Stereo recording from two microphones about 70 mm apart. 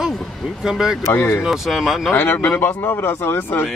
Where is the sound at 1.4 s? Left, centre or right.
Centre.